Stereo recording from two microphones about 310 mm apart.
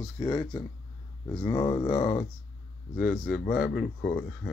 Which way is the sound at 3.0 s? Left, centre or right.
Left.